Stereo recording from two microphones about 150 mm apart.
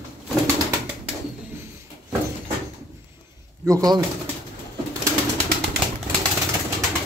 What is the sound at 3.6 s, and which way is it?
Speech, 25° right (ahead or behind).